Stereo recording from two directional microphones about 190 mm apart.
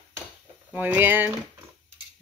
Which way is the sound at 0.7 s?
10° right (ahead or behind).